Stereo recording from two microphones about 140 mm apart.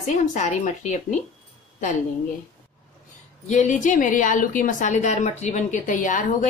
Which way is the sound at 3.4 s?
60° left (ahead or behind).